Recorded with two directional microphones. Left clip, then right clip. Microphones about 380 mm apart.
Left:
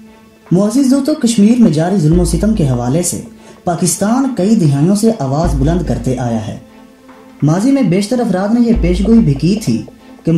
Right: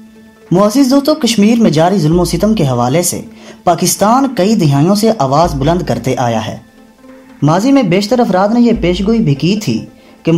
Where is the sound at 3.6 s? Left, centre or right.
Centre.